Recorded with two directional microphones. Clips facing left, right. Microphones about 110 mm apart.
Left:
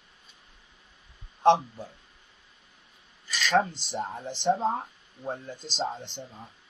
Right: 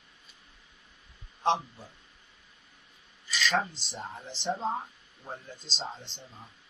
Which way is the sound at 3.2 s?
55° left (ahead or behind).